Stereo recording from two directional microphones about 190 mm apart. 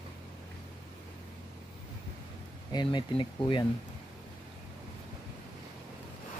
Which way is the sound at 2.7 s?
25° left (ahead or behind).